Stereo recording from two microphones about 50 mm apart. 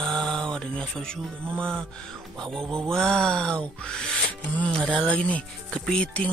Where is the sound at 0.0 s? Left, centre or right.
Centre.